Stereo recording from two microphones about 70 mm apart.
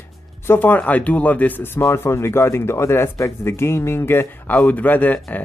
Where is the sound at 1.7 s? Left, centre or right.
Left.